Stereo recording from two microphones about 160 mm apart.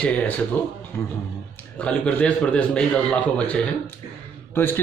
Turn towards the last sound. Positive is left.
turn(degrees=15)  # may be behind; listen again after turning